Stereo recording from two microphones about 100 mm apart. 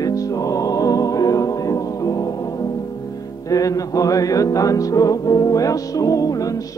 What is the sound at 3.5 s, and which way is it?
Music, 35° left (ahead or behind).